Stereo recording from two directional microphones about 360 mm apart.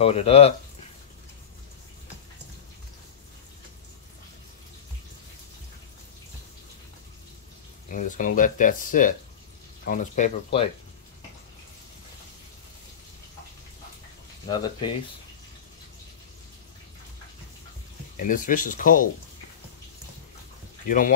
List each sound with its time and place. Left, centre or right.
0.0 s speech: centre
7.9 s speech: left
14.5 s speech: centre
18.1 s speech: left